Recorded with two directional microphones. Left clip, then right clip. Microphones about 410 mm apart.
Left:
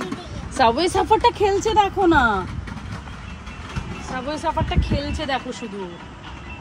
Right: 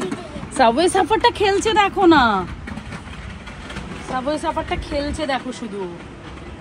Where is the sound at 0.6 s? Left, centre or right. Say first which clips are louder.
Right 3 dB; centre.